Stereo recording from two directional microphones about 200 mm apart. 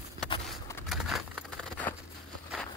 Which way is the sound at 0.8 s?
Centre (ahead or behind).